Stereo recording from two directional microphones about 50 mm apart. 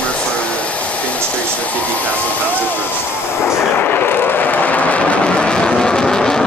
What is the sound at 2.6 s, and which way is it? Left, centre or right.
Speech, left.